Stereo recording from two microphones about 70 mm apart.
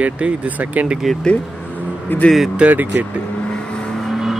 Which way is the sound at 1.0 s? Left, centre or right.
Centre.